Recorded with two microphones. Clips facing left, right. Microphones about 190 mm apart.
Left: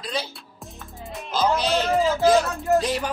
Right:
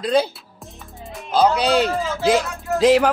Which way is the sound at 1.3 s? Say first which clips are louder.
Right 5 dB; 65° right (ahead or behind).